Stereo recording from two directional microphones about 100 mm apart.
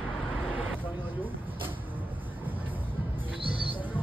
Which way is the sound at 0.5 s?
15° right (ahead or behind).